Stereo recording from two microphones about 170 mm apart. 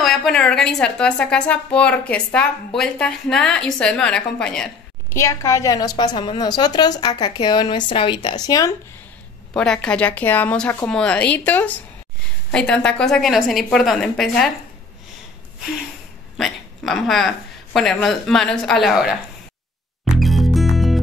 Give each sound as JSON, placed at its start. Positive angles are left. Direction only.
{"t": 0.0, "sound": "a woman's voice", "side_deg": 0}
{"t": 5.1, "sound": "a woman's voice", "side_deg": 20}
{"t": 9.6, "sound": "a woman's voice", "side_deg": 5}
{"t": 16.3, "sound": "a woman's voice", "side_deg": 0}
{"t": 20.2, "sound": "music", "side_deg": 0}